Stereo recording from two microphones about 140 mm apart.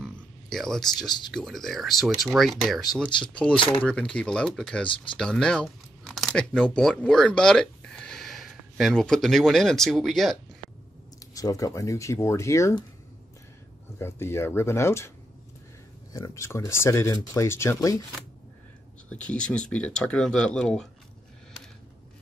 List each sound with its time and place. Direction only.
0.0 s a sound: centre (ahead or behind)
1.3 s speech: centre (ahead or behind)
4.8 s speech: 35° left (ahead or behind)
5.1 s speech: 5° left (ahead or behind)
11.3 s speech: 25° left (ahead or behind)
13.9 s speech: 20° left (ahead or behind)
19.0 s speech: 10° left (ahead or behind)